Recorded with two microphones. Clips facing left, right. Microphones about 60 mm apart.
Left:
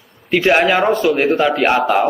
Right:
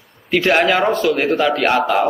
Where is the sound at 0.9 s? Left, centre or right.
Centre.